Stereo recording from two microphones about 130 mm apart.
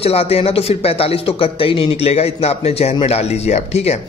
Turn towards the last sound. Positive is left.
turn(degrees=55)  # may be behind; listen again after turning